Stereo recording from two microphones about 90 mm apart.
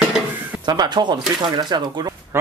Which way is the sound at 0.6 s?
50° right (ahead or behind).